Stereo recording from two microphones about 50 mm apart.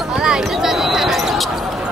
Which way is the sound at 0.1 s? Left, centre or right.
Centre.